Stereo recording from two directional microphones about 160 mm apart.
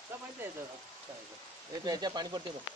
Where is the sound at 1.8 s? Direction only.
25° right (ahead or behind).